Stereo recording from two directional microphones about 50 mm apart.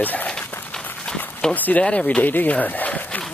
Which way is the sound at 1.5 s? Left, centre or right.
Left.